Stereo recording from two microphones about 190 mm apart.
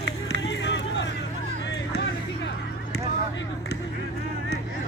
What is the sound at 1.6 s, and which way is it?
Music, 65° left (ahead or behind).